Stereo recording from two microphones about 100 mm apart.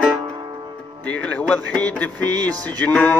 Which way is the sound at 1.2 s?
15° left (ahead or behind).